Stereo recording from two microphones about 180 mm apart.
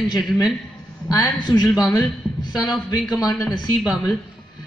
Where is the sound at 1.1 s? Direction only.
25° left (ahead or behind).